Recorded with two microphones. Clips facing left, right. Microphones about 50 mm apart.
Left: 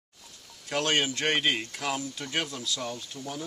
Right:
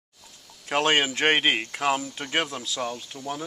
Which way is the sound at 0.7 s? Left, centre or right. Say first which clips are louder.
Right 5 dB; right.